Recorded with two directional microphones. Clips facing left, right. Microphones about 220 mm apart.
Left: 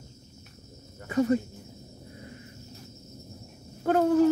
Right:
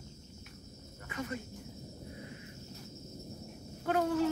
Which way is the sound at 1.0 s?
35° left (ahead or behind).